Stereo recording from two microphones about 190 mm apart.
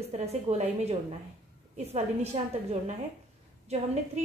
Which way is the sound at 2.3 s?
35° right (ahead or behind).